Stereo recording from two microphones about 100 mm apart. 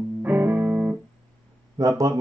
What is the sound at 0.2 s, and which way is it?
Music, 15° right (ahead or behind).